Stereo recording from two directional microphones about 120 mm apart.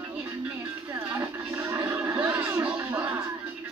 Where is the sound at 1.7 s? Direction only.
25° right (ahead or behind).